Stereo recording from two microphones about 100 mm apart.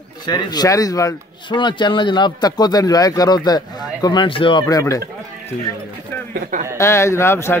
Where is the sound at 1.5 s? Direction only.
50° left (ahead or behind).